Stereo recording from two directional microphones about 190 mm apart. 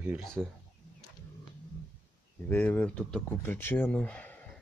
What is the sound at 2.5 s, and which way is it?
Speech, 10° left (ahead or behind).